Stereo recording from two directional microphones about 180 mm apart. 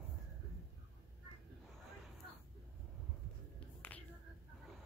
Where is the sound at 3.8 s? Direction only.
10° left (ahead or behind).